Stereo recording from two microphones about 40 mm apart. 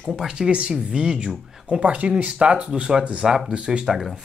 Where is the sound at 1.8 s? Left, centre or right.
Right.